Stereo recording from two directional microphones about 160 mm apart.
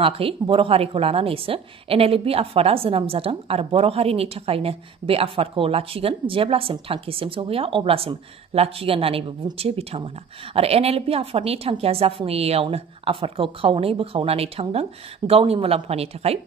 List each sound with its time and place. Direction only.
0.0 s a woman's voice: 35° right (ahead or behind)